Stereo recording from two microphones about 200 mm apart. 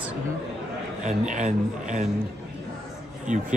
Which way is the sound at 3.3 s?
40° right (ahead or behind).